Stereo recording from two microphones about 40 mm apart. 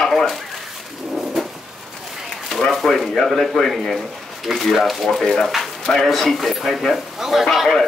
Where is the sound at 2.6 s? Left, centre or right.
Centre.